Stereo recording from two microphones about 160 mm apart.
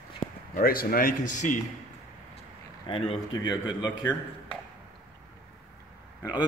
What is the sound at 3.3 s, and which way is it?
Speech, 25° left (ahead or behind).